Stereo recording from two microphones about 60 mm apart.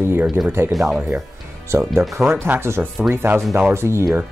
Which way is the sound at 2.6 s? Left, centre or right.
Right.